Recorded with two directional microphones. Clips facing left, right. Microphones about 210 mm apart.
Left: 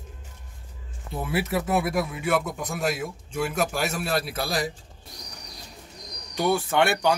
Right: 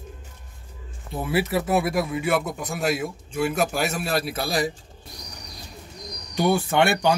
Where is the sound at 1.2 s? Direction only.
5° right (ahead or behind).